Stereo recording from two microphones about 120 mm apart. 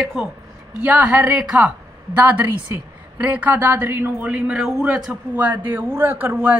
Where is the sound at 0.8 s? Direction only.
15° right (ahead or behind).